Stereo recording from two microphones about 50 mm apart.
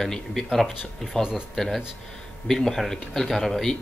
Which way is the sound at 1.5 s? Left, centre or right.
Centre.